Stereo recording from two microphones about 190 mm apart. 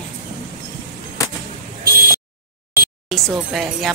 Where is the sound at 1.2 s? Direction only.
15° left (ahead or behind).